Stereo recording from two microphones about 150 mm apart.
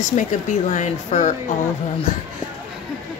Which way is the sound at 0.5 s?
55° left (ahead or behind).